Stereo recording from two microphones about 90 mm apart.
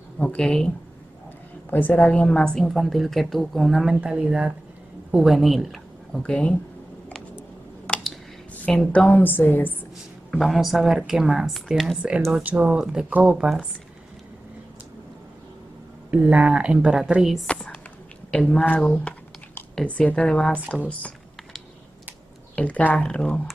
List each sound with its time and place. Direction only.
0.2 s a woman's voice: 10° left (ahead or behind)
3.9 s a woman's voice: 10° right (ahead or behind)
6.2 s a woman's voice: 10° left (ahead or behind)
7.3 s a sound: 15° left (ahead or behind)
8.9 s a woman's voice: 15° left (ahead or behind)
10.3 s a woman's voice: centre (ahead or behind)
16.1 s a woman's voice: 15° right (ahead or behind)
17.5 s a sound: 10° left (ahead or behind)
18.3 s a woman's voice: 10° left (ahead or behind)
22.6 s a woman's voice: 15° left (ahead or behind)